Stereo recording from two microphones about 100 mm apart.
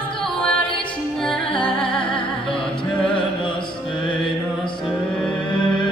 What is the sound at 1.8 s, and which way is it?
Music, 60° left (ahead or behind).